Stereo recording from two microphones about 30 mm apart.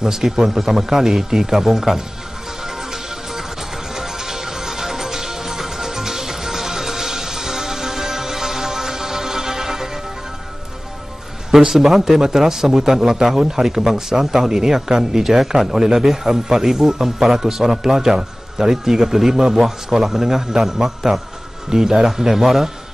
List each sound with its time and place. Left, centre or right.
0.0 s speech: centre
2.6 s music: centre
11.5 s speech: centre